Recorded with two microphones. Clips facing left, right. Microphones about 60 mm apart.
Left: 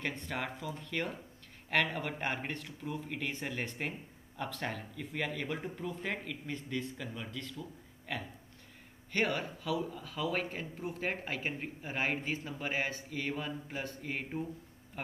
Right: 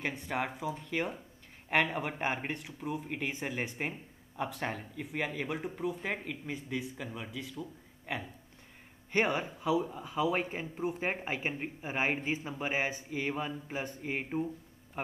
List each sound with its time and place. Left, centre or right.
0.0 s speech: centre